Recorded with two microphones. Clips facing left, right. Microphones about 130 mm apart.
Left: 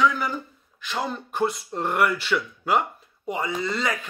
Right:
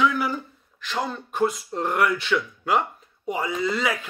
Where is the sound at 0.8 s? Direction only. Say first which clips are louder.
Right 1 dB; 5° left (ahead or behind).